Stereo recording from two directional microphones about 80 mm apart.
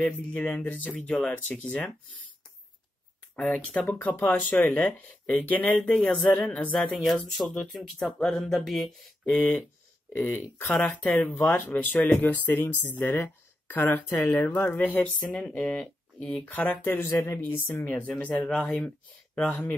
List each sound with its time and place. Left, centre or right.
0.0 s speech: centre
3.3 s speech: centre
9.2 s speech: centre
15.5 s speech: centre
16.8 s speech: left
17.4 s speech: left